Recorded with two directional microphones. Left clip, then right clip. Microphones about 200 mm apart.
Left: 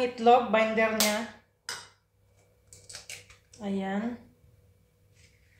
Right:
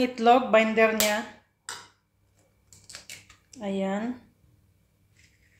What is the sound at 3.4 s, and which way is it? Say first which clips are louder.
Speech: right 4 dB; 60° right (ahead or behind).